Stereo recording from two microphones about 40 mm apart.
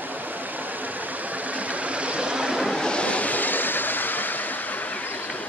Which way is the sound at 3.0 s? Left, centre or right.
Left.